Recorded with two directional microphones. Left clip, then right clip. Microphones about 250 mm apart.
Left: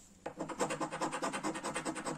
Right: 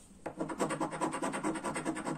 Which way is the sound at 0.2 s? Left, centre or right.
Centre.